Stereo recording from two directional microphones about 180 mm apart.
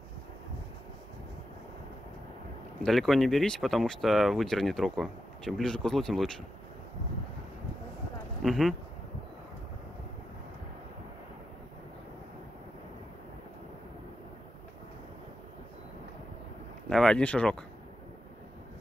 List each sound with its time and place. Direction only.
2.8 s speech: centre (ahead or behind)
8.4 s speech: centre (ahead or behind)
16.9 s speech: 5° left (ahead or behind)